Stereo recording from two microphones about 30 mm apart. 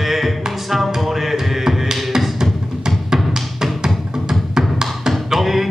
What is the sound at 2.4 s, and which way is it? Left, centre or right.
Music, right.